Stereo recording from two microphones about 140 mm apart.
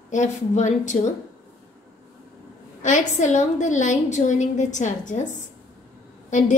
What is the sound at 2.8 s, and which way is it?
A woman's voice, 60° left (ahead or behind).